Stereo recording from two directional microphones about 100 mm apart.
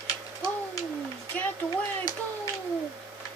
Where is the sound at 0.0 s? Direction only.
35° left (ahead or behind).